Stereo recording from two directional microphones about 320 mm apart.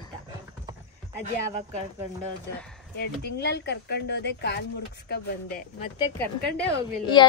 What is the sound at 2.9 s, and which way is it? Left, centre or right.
Speech, left.